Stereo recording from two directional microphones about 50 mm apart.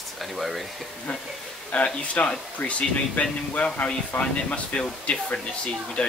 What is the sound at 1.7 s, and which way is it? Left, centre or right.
Speech, left.